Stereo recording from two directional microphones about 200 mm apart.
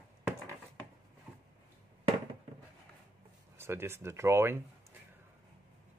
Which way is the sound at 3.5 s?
10° right (ahead or behind).